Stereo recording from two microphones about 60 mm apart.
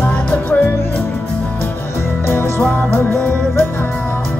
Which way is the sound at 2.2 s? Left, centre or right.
Left.